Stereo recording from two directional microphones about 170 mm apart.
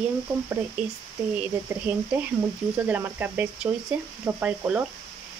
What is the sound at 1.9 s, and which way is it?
Speech, 10° right (ahead or behind).